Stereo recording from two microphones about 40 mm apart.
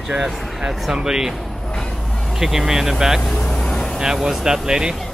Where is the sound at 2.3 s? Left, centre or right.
Centre.